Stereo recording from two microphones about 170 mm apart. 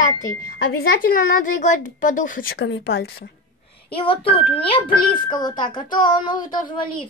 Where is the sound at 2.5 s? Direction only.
85° left; by 3.3 s 70° left (ahead or behind).